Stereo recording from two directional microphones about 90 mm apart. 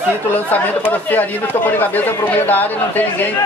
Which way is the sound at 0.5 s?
20° left (ahead or behind).